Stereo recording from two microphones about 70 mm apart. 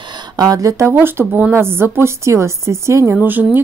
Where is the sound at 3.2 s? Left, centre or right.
Right.